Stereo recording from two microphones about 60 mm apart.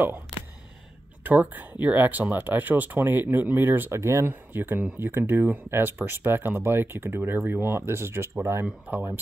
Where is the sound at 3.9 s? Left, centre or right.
Right.